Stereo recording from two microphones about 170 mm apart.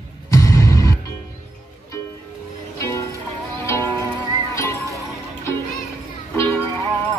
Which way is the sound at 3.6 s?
15° left (ahead or behind).